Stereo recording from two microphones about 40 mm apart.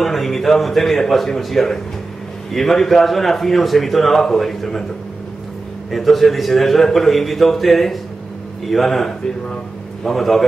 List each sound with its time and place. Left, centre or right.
0.0 s a man's voice: centre
5.9 s a man's voice: centre